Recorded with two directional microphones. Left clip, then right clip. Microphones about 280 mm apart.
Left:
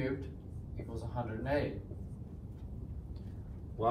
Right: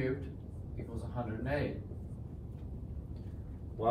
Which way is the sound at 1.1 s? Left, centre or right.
Centre.